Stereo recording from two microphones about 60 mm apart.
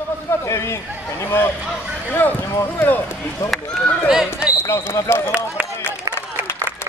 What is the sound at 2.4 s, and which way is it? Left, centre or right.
Speech, left.